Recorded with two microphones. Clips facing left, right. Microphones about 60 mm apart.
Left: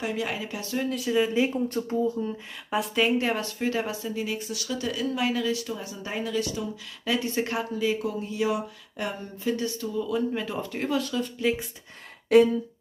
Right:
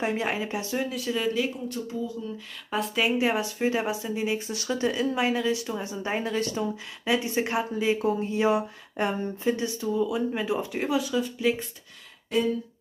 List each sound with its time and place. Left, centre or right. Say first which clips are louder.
0.0 s speech: right 2 dB; right
0.9 s speech: left 4 dB; centre
1.2 s speech: left 1 dB; left
1.5 s speech: left 5 dB; left
2.7 s speech: left 2 dB; centre; by 7.2 s right
7.2 s speech: even; right
12.3 s speech: left 9 dB; left